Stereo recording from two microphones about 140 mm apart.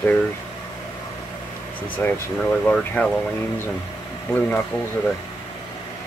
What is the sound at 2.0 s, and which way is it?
Speech, 15° left (ahead or behind).